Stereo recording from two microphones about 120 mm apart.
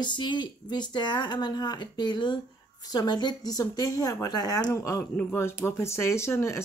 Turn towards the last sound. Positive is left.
turn(degrees=20)  # may be behind; listen again after turning